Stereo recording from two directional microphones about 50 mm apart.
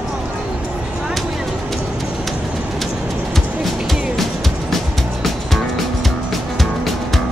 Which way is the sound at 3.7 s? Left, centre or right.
Centre.